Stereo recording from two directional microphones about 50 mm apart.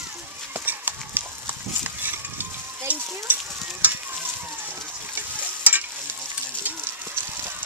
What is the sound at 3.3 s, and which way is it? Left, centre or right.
Stir, right.